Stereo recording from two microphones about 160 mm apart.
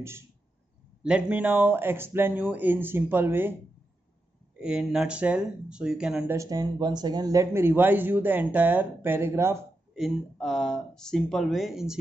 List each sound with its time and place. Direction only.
1.0 s speech: 5° right (ahead or behind)
4.6 s speech: 5° right (ahead or behind)
6.3 s speech: 20° right (ahead or behind)
9.9 s speech: centre (ahead or behind)